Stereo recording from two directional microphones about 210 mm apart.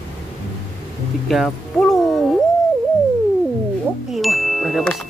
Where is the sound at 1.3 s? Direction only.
Centre (ahead or behind).